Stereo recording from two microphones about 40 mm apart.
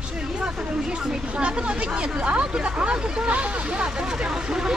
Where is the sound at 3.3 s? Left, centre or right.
Right; by 4.8 s centre.